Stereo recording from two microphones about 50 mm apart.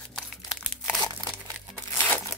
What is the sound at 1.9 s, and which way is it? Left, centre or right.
Crumpling, left.